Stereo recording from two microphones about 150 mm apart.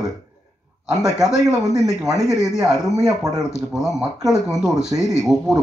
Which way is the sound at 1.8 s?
25° right (ahead or behind).